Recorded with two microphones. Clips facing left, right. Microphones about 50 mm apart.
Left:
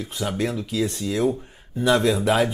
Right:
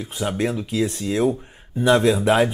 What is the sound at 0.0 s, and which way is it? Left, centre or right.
Speech, centre.